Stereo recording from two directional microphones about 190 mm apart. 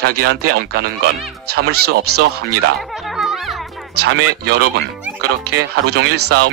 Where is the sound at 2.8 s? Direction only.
Centre (ahead or behind).